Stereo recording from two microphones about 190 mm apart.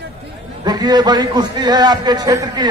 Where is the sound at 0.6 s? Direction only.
20° right (ahead or behind).